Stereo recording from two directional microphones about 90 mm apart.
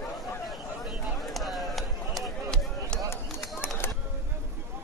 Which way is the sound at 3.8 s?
25° left (ahead or behind).